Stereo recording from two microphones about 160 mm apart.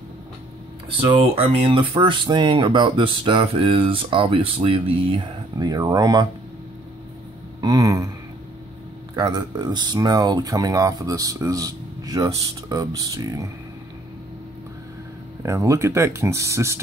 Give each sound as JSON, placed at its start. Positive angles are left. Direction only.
{"t": 0.8, "sound": "speech", "side_deg": -35}
{"t": 7.6, "sound": "a sound", "side_deg": -25}
{"t": 9.1, "sound": "speech", "side_deg": -25}
{"t": 15.4, "sound": "speech", "side_deg": -20}